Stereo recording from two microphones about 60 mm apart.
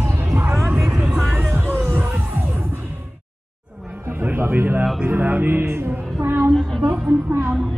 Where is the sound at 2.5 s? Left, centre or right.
Right.